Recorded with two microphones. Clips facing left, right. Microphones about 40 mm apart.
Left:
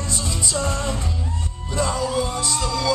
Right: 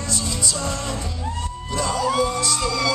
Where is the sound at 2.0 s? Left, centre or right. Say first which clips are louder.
Right 3 dB; right.